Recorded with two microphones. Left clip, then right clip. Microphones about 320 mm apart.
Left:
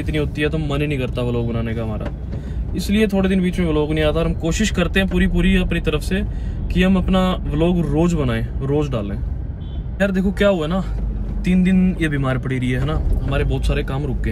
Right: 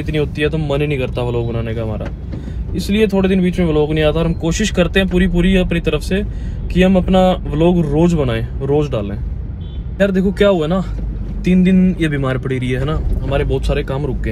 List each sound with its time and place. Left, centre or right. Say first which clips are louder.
0.0 s speech: right 4 dB; centre
1.2 s speech: right 3 dB; right
1.5 s speech: right 3 dB; centre